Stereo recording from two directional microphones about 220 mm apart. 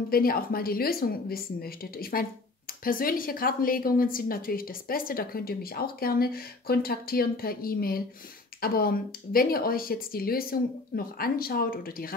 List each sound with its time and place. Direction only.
0.1 s a woman's voice: 40° left (ahead or behind)